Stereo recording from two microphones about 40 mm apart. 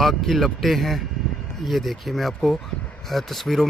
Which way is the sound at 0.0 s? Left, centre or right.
Centre.